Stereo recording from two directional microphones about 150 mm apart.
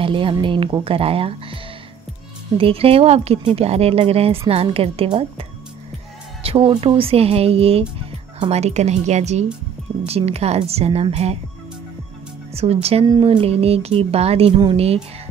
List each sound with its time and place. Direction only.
0.0 s speech: 35° right (ahead or behind)
6.4 s a woman's voice: 40° right (ahead or behind)
12.6 s a woman's voice: 45° right (ahead or behind)
13.0 s speech: 30° right (ahead or behind)